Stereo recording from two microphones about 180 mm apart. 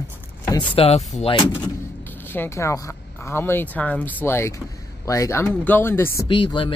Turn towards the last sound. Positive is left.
turn(degrees=25)  # may be behind; listen again after turning